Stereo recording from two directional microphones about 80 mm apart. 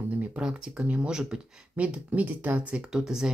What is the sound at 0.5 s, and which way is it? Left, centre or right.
Speech, centre.